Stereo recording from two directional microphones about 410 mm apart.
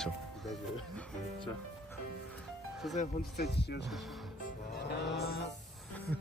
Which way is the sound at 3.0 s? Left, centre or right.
Left.